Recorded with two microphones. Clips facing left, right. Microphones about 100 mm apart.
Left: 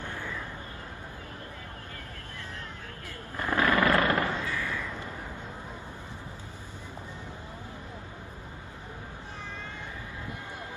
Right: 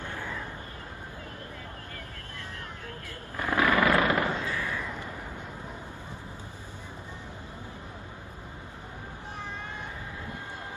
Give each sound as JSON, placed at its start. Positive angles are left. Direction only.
{"t": 3.3, "sound": "crow", "side_deg": -15}